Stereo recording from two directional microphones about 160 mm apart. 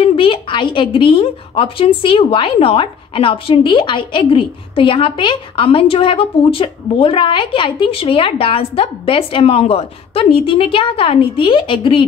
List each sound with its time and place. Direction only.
0.0 s a woman's voice: 35° left (ahead or behind)